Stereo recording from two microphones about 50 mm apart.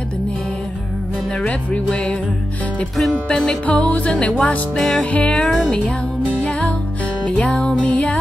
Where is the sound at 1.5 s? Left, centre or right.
Left.